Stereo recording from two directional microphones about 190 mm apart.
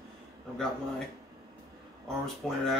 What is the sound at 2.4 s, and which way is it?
Speech, centre (ahead or behind).